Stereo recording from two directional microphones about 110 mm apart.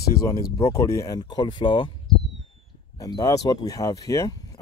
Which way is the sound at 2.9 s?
35° left (ahead or behind).